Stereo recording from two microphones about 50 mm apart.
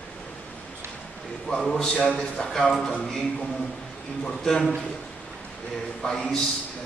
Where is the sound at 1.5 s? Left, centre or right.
Centre.